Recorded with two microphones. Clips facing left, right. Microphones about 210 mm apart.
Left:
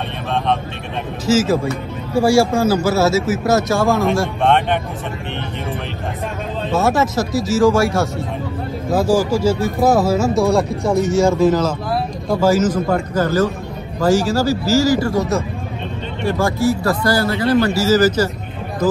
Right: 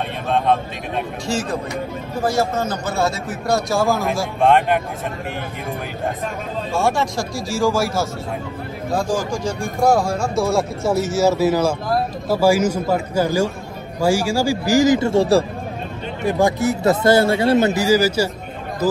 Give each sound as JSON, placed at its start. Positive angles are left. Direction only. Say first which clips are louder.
{"t": 1.2, "sound": "speech", "louder": "left 11 dB", "side_deg": 5}
{"t": 6.7, "sound": "speech", "louder": "left 4 dB", "side_deg": 0}
{"t": 16.3, "sound": "speech", "louder": "even", "side_deg": -20}